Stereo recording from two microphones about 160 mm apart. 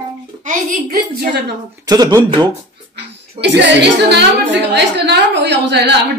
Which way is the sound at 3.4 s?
90° right.